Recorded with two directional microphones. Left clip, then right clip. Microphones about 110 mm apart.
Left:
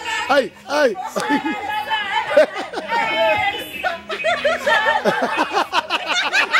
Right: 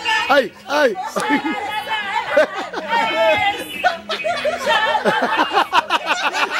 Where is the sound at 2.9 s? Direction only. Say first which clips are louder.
Right 2 dB; 35° right (ahead or behind).